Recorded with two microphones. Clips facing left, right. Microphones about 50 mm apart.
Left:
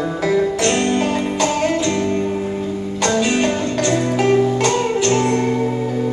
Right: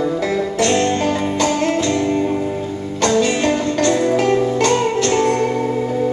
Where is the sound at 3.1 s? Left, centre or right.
Centre.